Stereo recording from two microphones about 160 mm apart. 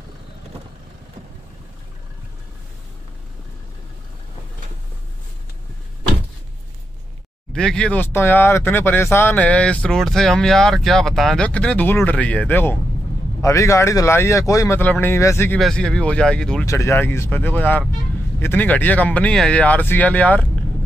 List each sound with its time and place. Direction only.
7.5 s speech: 5° left (ahead or behind)
16.6 s speech: 15° left (ahead or behind)